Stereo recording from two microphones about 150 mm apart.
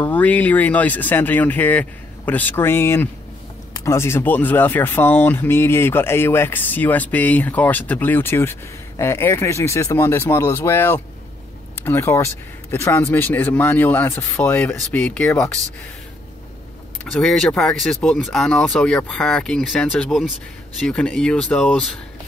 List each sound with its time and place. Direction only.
0.0 s speech: 10° left (ahead or behind)
17.0 s speech: 5° left (ahead or behind)